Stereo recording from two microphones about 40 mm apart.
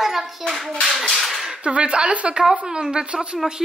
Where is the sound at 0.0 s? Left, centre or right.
Centre.